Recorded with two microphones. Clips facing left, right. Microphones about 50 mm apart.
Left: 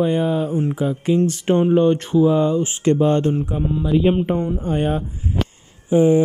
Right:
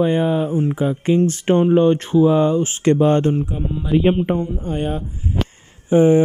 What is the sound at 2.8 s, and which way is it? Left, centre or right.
Speech, right.